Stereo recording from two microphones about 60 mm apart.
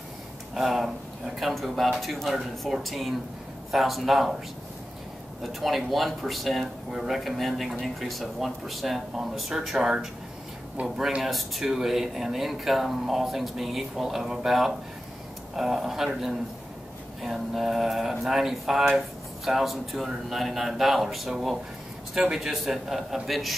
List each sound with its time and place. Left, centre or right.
0.6 s speech: centre
5.4 s speech: centre
10.8 s speech: right
11.2 s speech: centre